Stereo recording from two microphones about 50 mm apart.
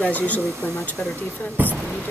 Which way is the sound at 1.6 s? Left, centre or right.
Right.